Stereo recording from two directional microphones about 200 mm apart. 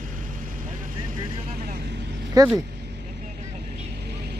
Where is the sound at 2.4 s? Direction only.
15° right (ahead or behind).